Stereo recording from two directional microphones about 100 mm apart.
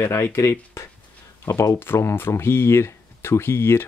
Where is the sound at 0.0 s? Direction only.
25° left (ahead or behind).